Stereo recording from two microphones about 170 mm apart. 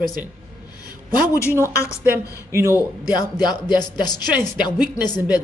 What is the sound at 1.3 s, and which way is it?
Speech, 15° left (ahead or behind).